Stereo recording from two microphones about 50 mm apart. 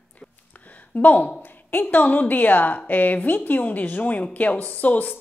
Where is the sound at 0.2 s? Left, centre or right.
Left.